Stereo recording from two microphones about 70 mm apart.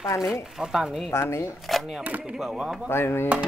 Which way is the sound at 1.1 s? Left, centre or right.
Left.